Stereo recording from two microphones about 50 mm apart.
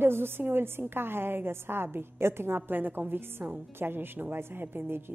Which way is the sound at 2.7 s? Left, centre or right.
Right.